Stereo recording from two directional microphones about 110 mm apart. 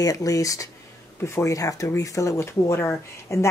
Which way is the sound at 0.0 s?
30° left (ahead or behind).